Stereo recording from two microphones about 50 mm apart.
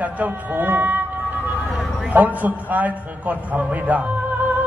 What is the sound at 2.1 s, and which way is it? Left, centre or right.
A man's voice, right.